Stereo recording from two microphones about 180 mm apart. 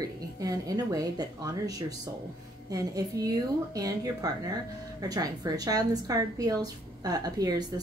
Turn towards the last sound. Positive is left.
turn(degrees=-20)  # may be behind; listen again after turning